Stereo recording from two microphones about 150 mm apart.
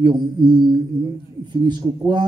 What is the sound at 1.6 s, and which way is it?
Speech, 30° right (ahead or behind).